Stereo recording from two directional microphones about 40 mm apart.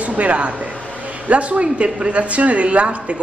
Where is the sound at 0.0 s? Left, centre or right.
Right.